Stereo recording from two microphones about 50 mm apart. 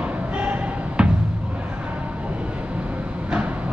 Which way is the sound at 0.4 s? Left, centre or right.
Right.